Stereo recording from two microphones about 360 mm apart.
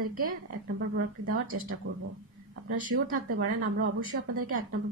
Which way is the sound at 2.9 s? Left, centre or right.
Right.